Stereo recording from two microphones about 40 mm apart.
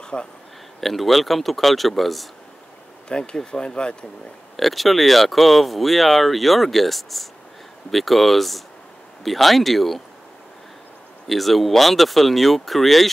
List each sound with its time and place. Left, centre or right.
0.0 s a sound: left
0.7 s speech: centre
3.1 s speech: left
4.6 s speech: centre
11.2 s speech: centre